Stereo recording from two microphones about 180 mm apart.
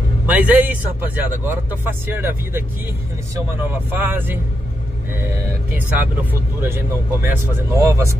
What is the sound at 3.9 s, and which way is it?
Speech, 10° right (ahead or behind).